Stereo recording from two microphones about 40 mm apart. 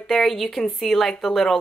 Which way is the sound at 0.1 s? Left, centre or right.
Centre.